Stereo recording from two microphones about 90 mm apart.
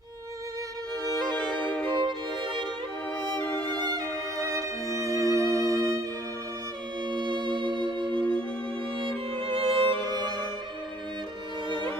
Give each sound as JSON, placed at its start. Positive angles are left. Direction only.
{"t": 1.6, "sound": "music", "side_deg": 15}
{"t": 1.9, "sound": "music", "side_deg": -60}
{"t": 3.7, "sound": "music", "side_deg": -50}
{"t": 4.8, "sound": "music", "side_deg": 35}
{"t": 5.1, "sound": "music", "side_deg": -35}
{"t": 7.1, "sound": "music", "side_deg": -60}
{"t": 9.3, "sound": "music", "side_deg": -90}